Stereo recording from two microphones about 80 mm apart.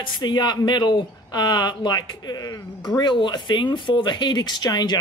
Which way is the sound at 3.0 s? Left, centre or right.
Left.